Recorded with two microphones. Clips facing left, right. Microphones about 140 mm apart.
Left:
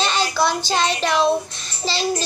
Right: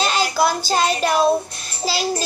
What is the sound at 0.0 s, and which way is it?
Child singing, 5° right (ahead or behind).